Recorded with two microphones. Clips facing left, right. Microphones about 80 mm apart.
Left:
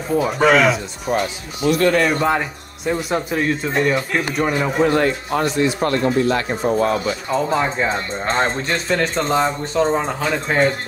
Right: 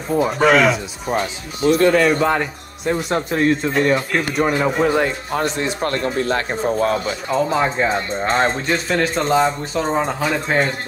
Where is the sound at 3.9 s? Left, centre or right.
Centre.